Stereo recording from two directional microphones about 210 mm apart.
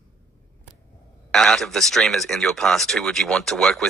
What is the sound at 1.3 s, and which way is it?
Speech, centre (ahead or behind).